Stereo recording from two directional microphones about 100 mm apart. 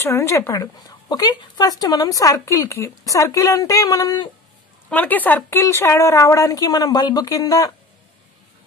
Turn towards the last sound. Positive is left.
turn(degrees=40)  # may be behind; listen again after turning